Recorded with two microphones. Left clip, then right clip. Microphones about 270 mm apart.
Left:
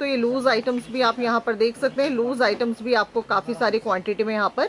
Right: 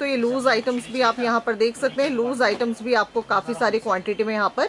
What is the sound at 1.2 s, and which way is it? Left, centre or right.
A man's voice, centre.